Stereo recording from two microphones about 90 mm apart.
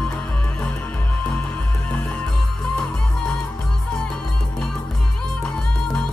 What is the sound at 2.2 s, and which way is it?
Music, 5° left (ahead or behind).